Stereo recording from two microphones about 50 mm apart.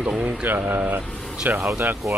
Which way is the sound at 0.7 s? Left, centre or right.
Right.